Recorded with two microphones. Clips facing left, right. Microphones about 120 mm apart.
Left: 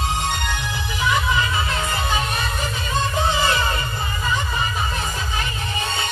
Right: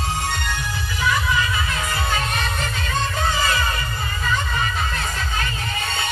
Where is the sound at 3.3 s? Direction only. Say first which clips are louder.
Left 1 dB; 20° left (ahead or behind).